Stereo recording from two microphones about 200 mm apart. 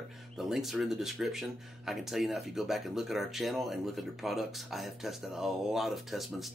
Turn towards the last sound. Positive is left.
turn(degrees=0)  # may be behind; listen again after turning